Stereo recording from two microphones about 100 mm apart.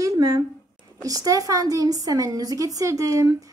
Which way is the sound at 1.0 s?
35° right (ahead or behind).